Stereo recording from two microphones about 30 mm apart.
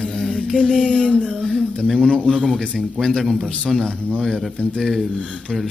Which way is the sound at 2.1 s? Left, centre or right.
Centre.